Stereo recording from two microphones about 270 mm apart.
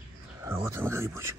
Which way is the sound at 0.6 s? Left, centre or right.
Centre.